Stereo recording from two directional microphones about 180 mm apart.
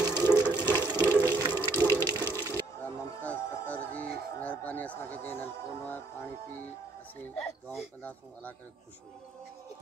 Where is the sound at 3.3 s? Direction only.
10° left (ahead or behind).